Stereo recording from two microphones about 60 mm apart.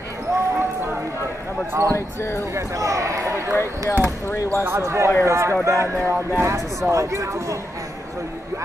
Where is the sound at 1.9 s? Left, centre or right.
Left.